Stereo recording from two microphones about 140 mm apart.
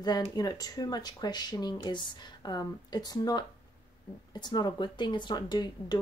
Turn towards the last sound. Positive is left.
turn(degrees=30)  # may be behind; listen again after turning